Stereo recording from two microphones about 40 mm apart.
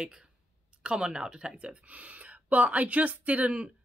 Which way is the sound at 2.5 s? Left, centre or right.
Right.